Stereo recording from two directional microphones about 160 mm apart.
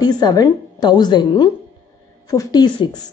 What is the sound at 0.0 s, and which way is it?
A woman's voice, 25° left (ahead or behind).